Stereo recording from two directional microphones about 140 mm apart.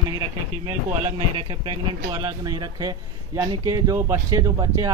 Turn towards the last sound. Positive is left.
turn(degrees=-25)  # may be behind; listen again after turning